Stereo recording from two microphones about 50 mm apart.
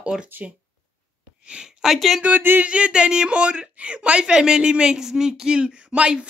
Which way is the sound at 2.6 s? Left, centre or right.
Right.